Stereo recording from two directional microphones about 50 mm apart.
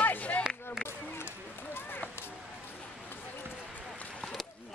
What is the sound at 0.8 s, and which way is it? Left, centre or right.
Run, left.